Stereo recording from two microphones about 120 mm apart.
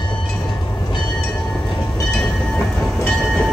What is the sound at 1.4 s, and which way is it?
Train, 5° left (ahead or behind).